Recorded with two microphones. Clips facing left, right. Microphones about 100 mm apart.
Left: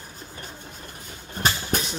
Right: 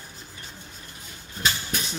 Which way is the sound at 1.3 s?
50° left (ahead or behind).